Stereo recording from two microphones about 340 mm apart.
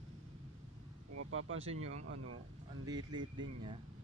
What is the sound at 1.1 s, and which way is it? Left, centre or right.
Speech, right.